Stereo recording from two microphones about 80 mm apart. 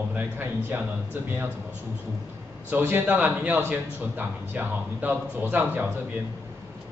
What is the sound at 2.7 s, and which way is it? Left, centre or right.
A man's voice, right.